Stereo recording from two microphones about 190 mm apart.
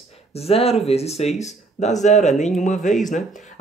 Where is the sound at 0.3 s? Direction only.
30° left (ahead or behind).